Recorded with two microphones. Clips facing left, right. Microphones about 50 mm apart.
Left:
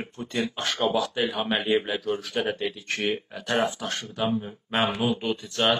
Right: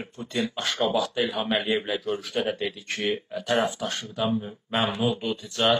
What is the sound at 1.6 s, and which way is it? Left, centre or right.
Speech, left.